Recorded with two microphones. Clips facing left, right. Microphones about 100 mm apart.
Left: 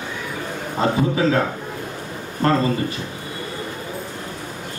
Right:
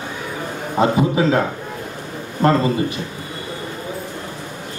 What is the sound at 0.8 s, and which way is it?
Speech, 20° right (ahead or behind).